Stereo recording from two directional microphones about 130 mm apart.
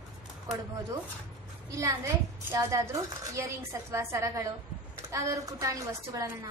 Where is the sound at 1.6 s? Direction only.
25° right (ahead or behind).